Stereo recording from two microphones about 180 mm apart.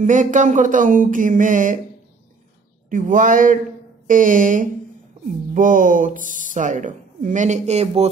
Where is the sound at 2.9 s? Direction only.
45° right (ahead or behind).